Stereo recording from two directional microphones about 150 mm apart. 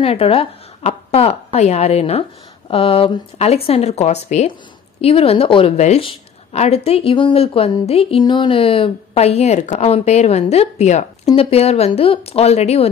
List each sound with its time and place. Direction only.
0.0 s a woman's voice: 40° left (ahead or behind)